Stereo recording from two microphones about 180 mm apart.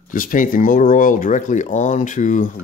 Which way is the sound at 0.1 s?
50° left (ahead or behind).